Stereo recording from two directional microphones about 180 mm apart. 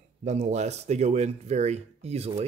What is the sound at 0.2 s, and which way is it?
Speech, 40° right (ahead or behind).